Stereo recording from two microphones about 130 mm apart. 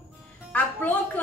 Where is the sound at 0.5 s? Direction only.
15° left (ahead or behind).